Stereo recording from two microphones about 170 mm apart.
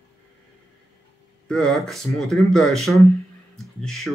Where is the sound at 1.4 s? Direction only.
5° left (ahead or behind).